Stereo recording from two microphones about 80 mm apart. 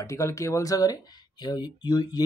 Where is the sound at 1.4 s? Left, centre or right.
Left.